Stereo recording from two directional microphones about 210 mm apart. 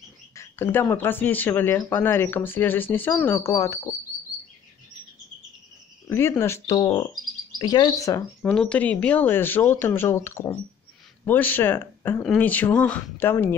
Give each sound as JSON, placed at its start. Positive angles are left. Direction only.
{"t": 0.3, "sound": "speech", "side_deg": 10}
{"t": 6.0, "sound": "speech", "side_deg": 10}
{"t": 8.5, "sound": "speech", "side_deg": 5}